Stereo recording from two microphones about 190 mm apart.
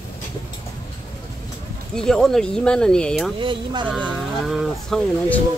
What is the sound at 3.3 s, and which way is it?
Speech, 25° right (ahead or behind).